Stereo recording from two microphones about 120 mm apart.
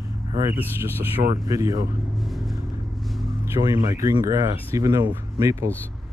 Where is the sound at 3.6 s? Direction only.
35° right (ahead or behind).